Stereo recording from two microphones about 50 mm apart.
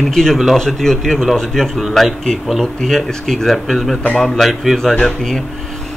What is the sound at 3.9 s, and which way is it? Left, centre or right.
Speech, centre.